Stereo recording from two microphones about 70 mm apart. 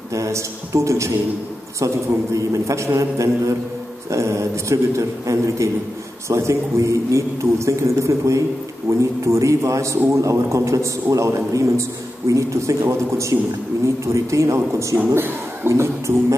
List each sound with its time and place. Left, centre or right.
0.1 s a man's voice: right
2.3 s a man's voice: right
15.0 s speech: right